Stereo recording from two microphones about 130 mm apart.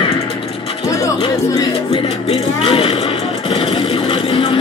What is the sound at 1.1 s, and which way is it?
Speech, 35° left (ahead or behind).